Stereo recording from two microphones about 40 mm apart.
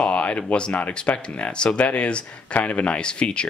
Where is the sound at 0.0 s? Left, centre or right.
Left.